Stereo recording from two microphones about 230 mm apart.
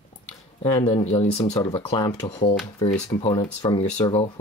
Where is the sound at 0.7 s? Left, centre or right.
Left.